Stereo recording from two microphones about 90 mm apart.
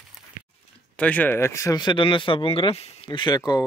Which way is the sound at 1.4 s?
30° left (ahead or behind).